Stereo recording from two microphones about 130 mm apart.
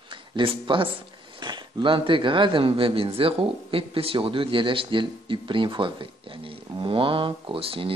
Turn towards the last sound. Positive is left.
turn(degrees=-45)  # may be behind; listen again after turning